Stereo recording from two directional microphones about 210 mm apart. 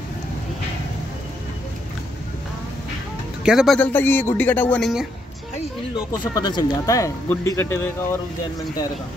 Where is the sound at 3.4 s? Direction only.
Centre (ahead or behind).